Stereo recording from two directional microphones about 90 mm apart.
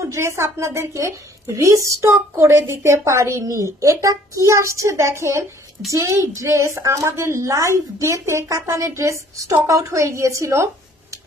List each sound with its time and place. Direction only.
0.1 s a woman's voice: 30° right (ahead or behind)